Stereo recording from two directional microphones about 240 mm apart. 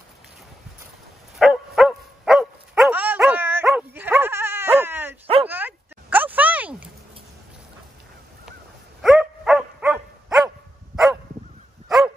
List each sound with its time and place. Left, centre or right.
1.4 s dog: centre
5.2 s bow-wow: right
5.5 s a sound: centre
9.0 s dog: centre